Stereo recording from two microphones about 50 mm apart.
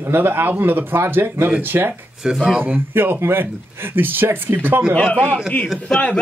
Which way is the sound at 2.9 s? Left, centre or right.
Right.